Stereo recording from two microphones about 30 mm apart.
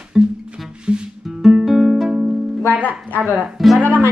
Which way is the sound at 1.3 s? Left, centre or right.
Centre.